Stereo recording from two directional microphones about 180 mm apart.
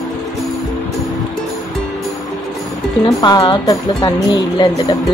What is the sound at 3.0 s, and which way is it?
Speech, 20° left (ahead or behind).